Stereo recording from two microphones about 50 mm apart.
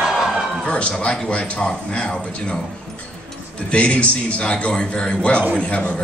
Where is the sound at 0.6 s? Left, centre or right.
Left.